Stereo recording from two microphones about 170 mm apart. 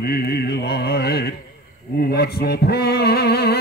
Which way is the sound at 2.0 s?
65° left (ahead or behind).